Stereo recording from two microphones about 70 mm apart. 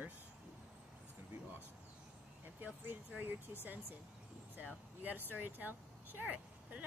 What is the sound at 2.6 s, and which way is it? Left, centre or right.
Speech, right.